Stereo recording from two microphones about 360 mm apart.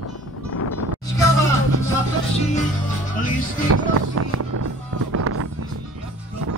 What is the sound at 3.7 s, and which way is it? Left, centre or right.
Music, right.